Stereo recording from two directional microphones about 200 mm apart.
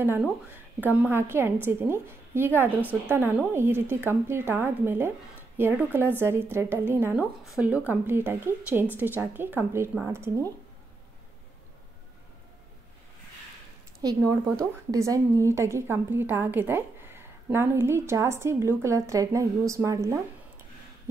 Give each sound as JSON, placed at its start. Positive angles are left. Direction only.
{"t": 0.0, "sound": "a woman's voice", "side_deg": -10}
{"t": 14.0, "sound": "a woman's voice", "side_deg": -20}